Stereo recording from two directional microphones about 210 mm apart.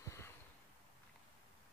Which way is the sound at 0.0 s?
15° left (ahead or behind).